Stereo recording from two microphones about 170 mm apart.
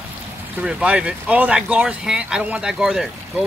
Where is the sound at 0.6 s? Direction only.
5° right (ahead or behind).